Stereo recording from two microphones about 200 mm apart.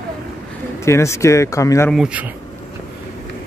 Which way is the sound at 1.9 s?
5° right (ahead or behind).